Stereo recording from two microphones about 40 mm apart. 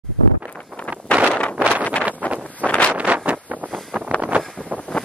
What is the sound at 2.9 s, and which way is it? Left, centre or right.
Wind noise, right.